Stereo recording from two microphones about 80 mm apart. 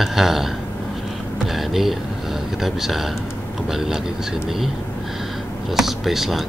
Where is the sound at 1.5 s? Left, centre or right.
Centre.